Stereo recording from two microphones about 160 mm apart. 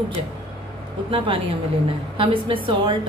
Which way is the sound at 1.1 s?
35° right (ahead or behind).